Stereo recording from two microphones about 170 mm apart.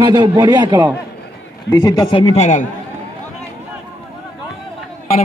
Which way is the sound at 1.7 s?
20° left (ahead or behind).